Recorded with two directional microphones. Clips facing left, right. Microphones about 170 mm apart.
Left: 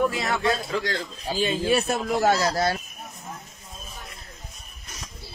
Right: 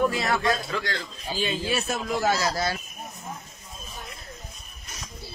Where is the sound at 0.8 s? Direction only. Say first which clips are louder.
Left 3 dB; 40° left (ahead or behind).